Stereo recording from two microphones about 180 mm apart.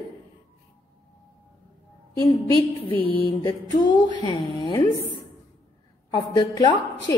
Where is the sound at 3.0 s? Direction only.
30° left (ahead or behind).